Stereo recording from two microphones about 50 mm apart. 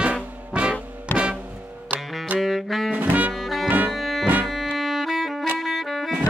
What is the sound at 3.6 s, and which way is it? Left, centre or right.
Music, right.